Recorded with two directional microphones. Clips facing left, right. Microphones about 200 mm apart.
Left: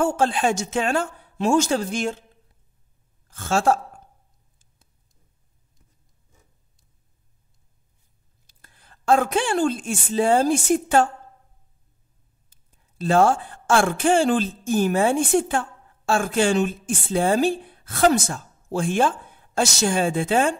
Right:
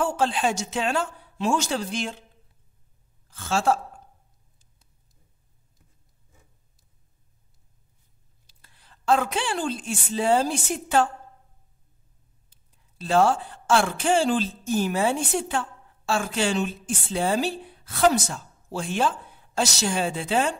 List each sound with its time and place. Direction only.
0.0 s speech: 45° left (ahead or behind)
3.3 s a woman's voice: 45° left (ahead or behind)
8.5 s a woman's voice: 45° left (ahead or behind)
12.4 s a woman's voice: 45° left (ahead or behind)